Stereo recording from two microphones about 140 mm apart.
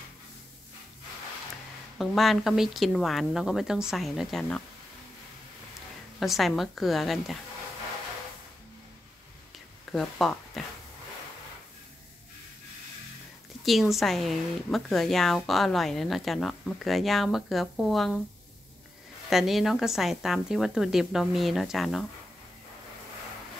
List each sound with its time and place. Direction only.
2.0 s a woman's voice: centre (ahead or behind)
6.1 s a woman's voice: centre (ahead or behind)
9.8 s speech: centre (ahead or behind)
13.7 s a woman's voice: centre (ahead or behind)
19.2 s a woman's voice: centre (ahead or behind)